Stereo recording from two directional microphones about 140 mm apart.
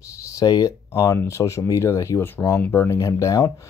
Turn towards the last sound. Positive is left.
turn(degrees=20)  # may be behind; listen again after turning